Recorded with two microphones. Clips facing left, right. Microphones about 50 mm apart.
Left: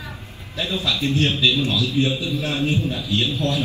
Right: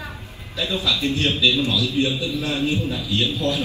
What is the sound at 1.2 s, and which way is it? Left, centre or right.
Speech, left.